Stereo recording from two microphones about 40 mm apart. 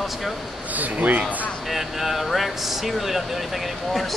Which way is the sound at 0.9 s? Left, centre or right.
Right.